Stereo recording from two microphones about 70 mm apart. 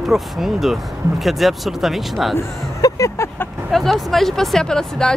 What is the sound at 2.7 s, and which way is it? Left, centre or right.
Speech, left.